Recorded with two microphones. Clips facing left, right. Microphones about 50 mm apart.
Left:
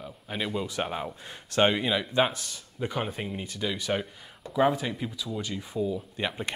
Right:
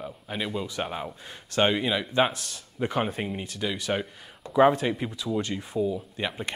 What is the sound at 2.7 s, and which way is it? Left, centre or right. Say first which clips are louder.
Speech: right 4 dB; centre.